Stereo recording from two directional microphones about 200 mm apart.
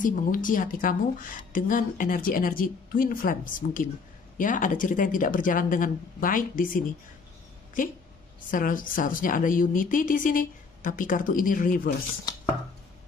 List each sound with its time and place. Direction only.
0.0 s a woman's voice: 40° left (ahead or behind)
8.5 s a woman's voice: 45° left (ahead or behind)